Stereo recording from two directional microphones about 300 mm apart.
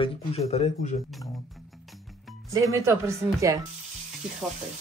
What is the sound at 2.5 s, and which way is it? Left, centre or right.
Speech, centre.